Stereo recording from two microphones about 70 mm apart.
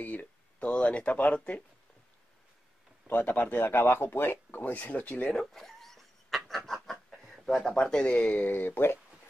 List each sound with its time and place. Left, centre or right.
0.0 s speech: left
3.1 s speech: left
5.4 s a sound: centre
7.5 s speech: centre; by 9.0 s left